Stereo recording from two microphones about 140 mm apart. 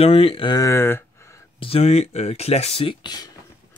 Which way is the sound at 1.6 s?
45° left (ahead or behind).